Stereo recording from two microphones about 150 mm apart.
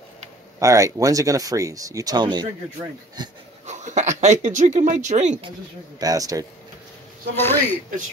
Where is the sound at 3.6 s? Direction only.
50° right (ahead or behind).